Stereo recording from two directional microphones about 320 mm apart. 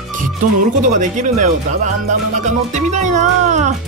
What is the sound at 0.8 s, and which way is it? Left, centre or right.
Speech, right.